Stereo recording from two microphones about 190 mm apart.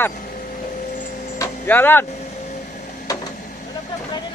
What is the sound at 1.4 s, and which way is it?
Tick-tock, 10° left (ahead or behind).